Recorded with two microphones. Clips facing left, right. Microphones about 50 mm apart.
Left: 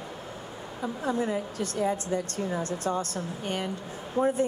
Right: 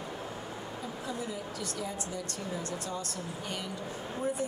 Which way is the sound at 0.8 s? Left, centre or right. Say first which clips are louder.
Left 11 dB; left.